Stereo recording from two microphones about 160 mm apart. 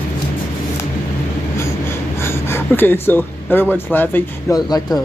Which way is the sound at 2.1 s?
15° left (ahead or behind).